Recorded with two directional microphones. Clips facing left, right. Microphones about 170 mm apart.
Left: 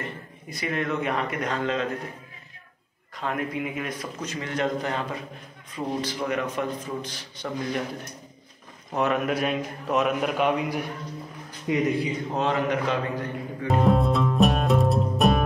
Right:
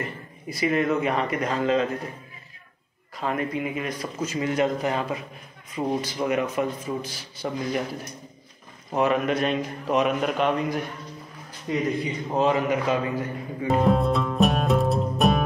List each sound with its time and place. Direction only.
0.5 s speech: 5° right (ahead or behind)
3.2 s a man's voice: centre (ahead or behind)
11.9 s a man's voice: centre (ahead or behind)